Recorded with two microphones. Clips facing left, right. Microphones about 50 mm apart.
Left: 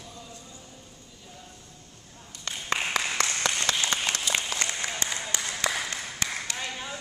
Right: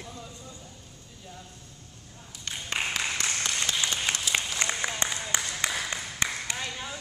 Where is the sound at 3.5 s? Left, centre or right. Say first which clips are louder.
Left 3 dB; left.